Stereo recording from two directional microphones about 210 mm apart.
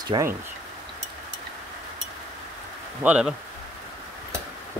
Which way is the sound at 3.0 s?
5° right (ahead or behind).